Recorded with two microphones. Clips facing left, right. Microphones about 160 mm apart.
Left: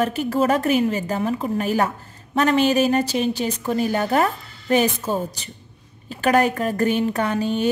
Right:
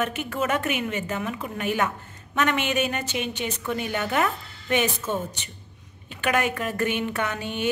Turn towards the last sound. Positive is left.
turn(degrees=35)  # may be behind; listen again after turning